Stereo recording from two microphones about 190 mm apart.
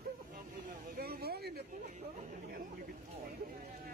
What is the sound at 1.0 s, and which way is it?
Speech, 55° right (ahead or behind).